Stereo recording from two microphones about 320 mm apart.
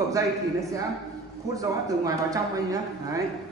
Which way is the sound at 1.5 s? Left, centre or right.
Centre.